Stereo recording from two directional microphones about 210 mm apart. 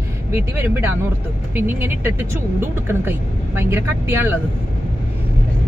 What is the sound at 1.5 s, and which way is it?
Speech, 10° right (ahead or behind).